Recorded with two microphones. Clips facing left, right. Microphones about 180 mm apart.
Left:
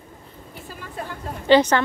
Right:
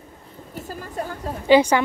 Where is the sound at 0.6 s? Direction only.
45° right (ahead or behind).